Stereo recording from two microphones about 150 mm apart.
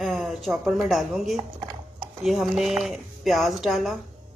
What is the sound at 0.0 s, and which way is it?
Speech, centre (ahead or behind).